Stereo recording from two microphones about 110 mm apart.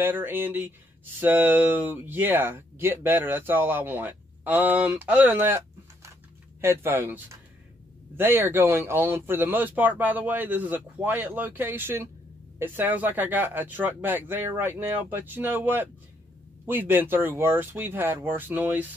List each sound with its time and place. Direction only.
0.0 s speech: 20° right (ahead or behind)
6.6 s speech: 20° right (ahead or behind)